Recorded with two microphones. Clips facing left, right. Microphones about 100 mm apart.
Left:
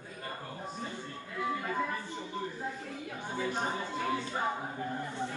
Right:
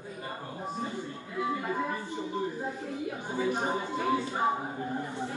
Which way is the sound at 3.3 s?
15° right (ahead or behind).